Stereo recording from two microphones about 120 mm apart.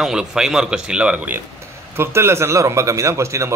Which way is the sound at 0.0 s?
5° right (ahead or behind).